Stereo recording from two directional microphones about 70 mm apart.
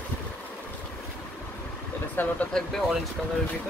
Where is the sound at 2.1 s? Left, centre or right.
Left.